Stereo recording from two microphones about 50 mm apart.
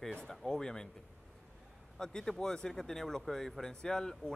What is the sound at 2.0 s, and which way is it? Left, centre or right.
Speech, centre.